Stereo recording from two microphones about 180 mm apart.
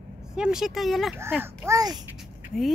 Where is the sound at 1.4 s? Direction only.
15° right (ahead or behind).